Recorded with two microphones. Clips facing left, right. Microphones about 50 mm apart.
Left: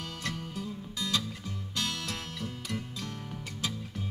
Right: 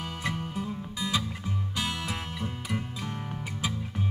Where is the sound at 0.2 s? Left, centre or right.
Right.